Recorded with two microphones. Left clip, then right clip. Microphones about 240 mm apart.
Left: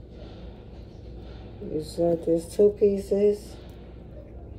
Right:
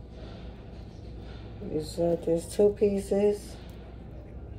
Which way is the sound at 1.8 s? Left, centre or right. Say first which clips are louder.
Left 3 dB; centre.